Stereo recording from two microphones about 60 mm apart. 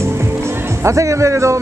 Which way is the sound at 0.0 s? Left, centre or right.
Right.